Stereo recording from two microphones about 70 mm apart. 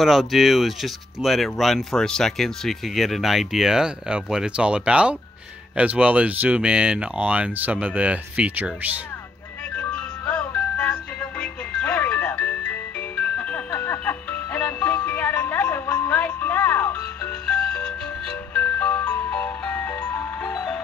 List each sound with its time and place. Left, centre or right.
0.0 s speech: centre; by 8.9 s right
9.8 s music: centre; by 17.3 s left
17.5 s music: centre; by 20.2 s left